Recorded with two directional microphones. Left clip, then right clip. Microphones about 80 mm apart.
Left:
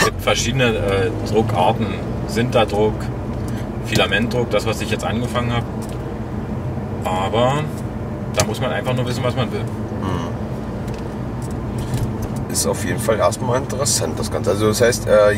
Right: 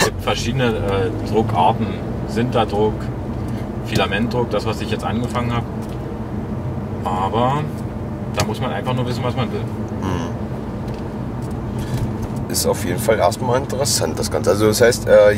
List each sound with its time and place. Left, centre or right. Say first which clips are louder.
0.2 s speech: left 3 dB; centre
0.6 s a man's voice: left 2 dB; left
3.9 s speech: left 2 dB; centre
7.1 s a man's voice: left 1 dB; centre
12.5 s speech: right 2 dB; right